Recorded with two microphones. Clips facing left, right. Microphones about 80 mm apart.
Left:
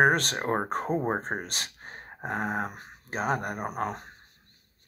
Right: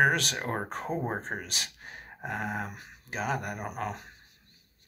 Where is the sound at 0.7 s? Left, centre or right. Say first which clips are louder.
Left 5 dB; left.